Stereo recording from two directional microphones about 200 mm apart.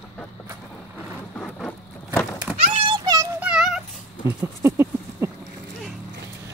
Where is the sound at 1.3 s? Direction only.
5° left (ahead or behind).